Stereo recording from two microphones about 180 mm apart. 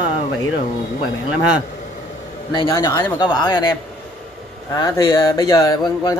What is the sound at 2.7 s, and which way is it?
Speech, 20° left (ahead or behind).